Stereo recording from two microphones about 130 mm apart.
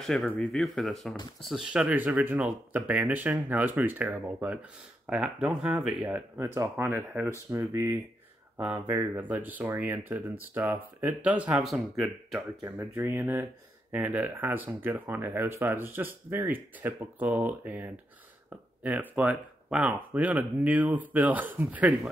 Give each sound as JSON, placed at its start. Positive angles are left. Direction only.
{"t": 0.0, "sound": "speech", "side_deg": 5}